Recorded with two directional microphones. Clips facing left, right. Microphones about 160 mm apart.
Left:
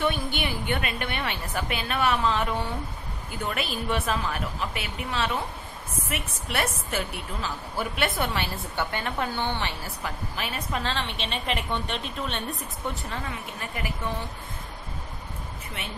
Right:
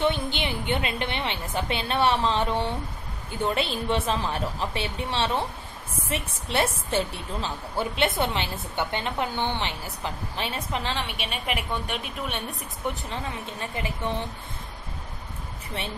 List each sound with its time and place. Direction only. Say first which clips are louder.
0.0 s a woman's voice: right 2 dB; 25° right (ahead or behind)
10.8 s a woman's voice: even; 15° right (ahead or behind)